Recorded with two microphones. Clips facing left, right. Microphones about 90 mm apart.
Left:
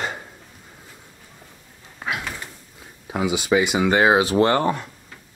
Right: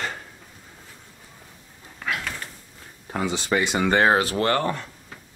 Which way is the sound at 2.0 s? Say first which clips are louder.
Left 1 dB; 20° left (ahead or behind).